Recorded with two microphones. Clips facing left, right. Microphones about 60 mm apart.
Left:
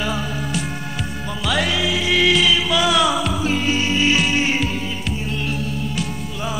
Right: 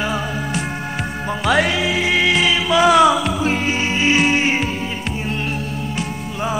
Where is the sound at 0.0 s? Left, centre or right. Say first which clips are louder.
Right 2 dB; right.